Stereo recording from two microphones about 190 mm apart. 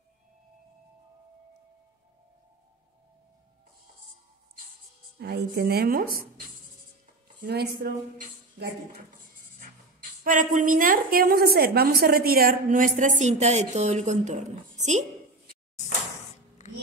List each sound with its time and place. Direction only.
5.2 s a woman's voice: 55° right (ahead or behind)
7.4 s speech: 55° right (ahead or behind)
10.2 s a woman's voice: 45° right (ahead or behind)